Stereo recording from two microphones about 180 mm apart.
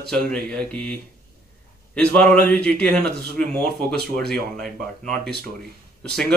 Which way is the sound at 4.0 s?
60° right (ahead or behind).